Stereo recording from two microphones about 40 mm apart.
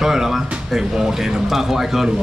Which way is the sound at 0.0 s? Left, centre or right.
Centre.